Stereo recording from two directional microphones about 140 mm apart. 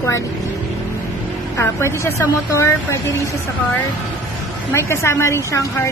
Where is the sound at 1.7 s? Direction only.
20° left (ahead or behind).